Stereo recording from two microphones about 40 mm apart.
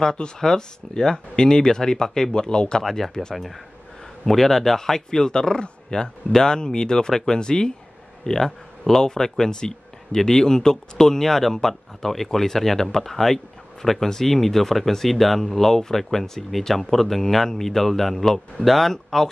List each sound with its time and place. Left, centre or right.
0.0 s speech: centre
2.8 s speech: centre
4.3 s speech: centre